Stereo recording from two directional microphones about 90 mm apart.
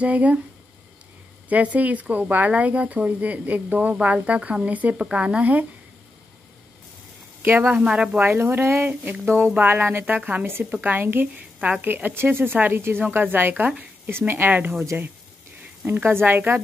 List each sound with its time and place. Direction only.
0.0 s speech: 15° right (ahead or behind)
1.5 s speech: 15° right (ahead or behind)
7.4 s speech: 20° right (ahead or behind)
7.7 s speech: 10° right (ahead or behind)
8.3 s speech: 25° right (ahead or behind)